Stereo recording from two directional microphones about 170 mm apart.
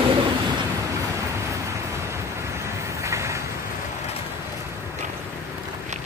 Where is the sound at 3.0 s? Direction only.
15° right (ahead or behind).